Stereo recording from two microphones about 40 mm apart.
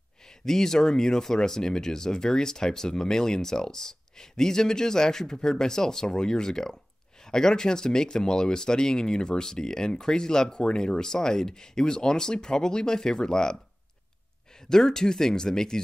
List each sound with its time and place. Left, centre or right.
0.5 s speech: centre
14.7 s speech: centre